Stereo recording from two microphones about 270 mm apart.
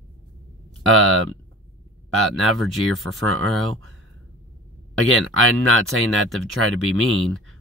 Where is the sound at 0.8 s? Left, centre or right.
Right.